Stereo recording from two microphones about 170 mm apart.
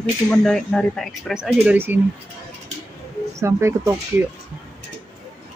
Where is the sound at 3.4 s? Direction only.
15° right (ahead or behind).